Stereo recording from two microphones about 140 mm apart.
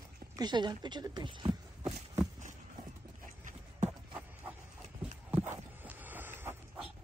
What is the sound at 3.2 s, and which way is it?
Clip-clop, 65° right (ahead or behind).